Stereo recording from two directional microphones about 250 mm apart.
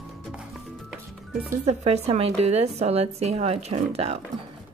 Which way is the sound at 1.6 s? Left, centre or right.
Right.